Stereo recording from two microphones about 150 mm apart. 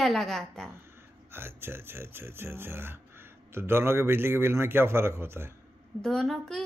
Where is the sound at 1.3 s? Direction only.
15° right (ahead or behind).